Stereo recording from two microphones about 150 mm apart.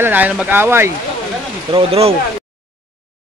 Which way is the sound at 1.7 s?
40° right (ahead or behind).